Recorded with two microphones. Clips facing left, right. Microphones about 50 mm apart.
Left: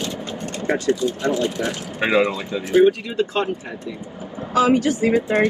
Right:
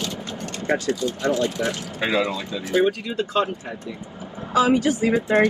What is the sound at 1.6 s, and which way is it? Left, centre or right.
Speech, left.